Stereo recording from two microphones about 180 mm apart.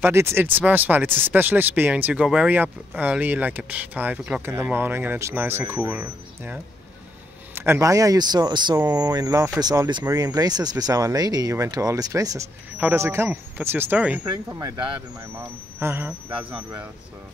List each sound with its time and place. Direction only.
0.0 s speech: 15° right (ahead or behind)